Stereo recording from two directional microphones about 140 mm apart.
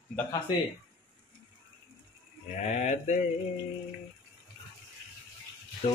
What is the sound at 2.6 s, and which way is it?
Speech, 55° left (ahead or behind).